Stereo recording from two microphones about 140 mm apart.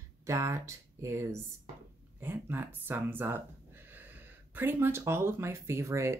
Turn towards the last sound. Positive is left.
turn(degrees=-20)  # may be behind; listen again after turning